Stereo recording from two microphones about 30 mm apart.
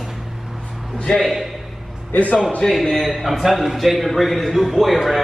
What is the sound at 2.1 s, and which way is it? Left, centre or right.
Speech, left.